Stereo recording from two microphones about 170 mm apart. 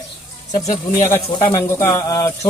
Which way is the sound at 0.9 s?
15° left (ahead or behind).